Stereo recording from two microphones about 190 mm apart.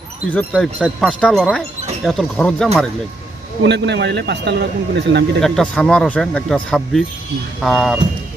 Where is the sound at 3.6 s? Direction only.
65° right (ahead or behind).